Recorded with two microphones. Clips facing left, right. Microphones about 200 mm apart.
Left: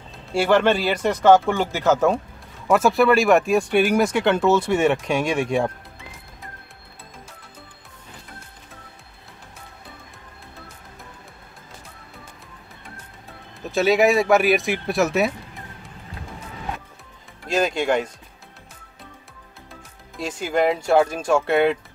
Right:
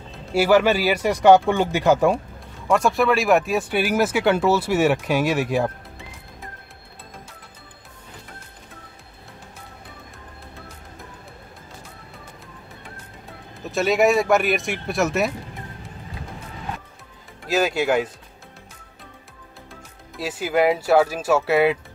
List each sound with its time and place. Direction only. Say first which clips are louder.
0.1 s speech: right 2 dB; 5° right (ahead or behind)
2.7 s speech: left 2 dB; centre (ahead or behind)
13.6 s speech: left 1 dB; centre (ahead or behind)
17.5 s speech: even; 5° right (ahead or behind)
20.2 s speech: right 1 dB; 5° right (ahead or behind)